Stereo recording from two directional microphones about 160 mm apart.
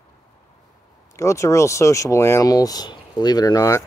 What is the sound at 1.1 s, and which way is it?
Speech, 20° left (ahead or behind).